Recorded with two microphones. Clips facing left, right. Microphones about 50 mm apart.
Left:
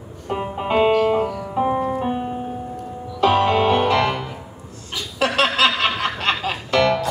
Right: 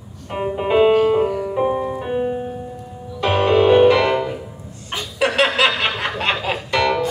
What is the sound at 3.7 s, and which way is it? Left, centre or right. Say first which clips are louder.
Music: right 5 dB; right.